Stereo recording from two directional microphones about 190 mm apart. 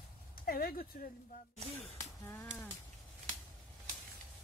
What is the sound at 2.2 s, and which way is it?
Speech, 10° left (ahead or behind).